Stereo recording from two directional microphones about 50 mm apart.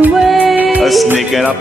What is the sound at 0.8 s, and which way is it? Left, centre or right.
Music, centre.